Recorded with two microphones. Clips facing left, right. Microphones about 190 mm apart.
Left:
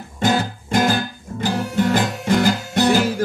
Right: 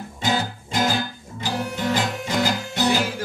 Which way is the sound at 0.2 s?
50° left (ahead or behind).